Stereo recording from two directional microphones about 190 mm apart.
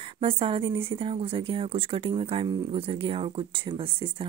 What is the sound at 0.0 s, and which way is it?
Speech, 30° right (ahead or behind).